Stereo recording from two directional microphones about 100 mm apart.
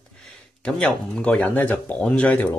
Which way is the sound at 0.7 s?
10° left (ahead or behind).